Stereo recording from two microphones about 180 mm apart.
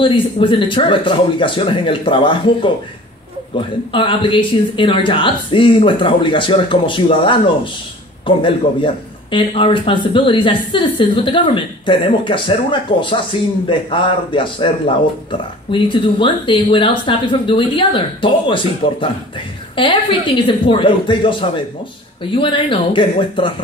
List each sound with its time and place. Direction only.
0.0 s a man's voice: 30° left (ahead or behind)